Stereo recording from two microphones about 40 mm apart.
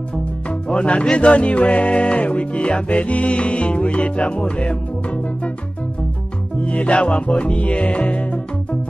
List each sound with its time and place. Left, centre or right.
0.7 s music: left
6.6 s music: left